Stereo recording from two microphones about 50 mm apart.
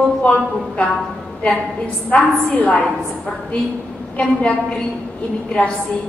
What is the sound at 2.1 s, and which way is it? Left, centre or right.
Speech, left.